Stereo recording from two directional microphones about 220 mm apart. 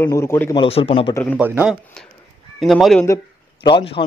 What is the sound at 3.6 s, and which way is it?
Speech, 25° left (ahead or behind).